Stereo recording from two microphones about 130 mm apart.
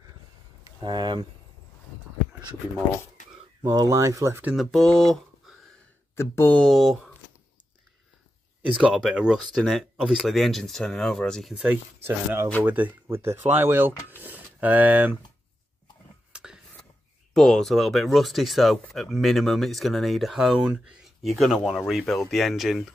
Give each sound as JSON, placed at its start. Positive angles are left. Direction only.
{"t": 0.7, "sound": "speech", "side_deg": -35}
{"t": 3.6, "sound": "speech", "side_deg": -25}
{"t": 4.6, "sound": "speech", "side_deg": 0}
{"t": 6.1, "sound": "speech", "side_deg": 20}
{"t": 6.6, "sound": "speech", "side_deg": 0}
{"t": 8.6, "sound": "speech", "side_deg": -10}
{"t": 11.5, "sound": "speech", "side_deg": -10}
{"t": 16.3, "sound": "a sound", "side_deg": -5}
{"t": 17.3, "sound": "speech", "side_deg": 5}